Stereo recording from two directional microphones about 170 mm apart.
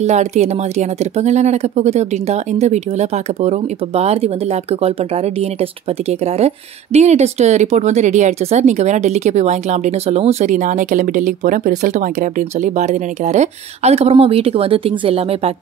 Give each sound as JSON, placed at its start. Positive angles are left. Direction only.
{"t": 0.0, "sound": "speech", "side_deg": -40}